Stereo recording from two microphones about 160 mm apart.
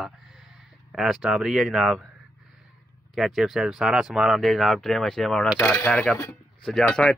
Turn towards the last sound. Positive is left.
turn(degrees=5)  # may be behind; listen again after turning